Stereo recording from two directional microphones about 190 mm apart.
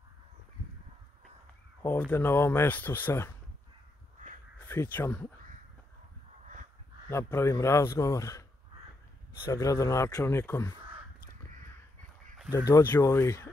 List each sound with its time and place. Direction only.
1.8 s speech: 10° left (ahead or behind)
4.6 s speech: 10° left (ahead or behind)
7.1 s speech: 15° left (ahead or behind)
12.4 s speech: 15° left (ahead or behind)